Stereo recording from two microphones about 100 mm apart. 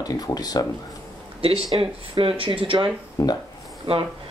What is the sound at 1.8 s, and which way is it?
Speech, 65° right (ahead or behind).